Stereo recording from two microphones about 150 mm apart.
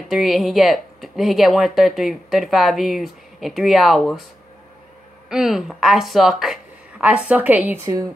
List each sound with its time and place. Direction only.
0.1 s speech: centre (ahead or behind)
5.3 s speech: centre (ahead or behind)